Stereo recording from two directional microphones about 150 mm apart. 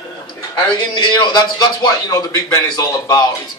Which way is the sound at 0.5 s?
30° left (ahead or behind).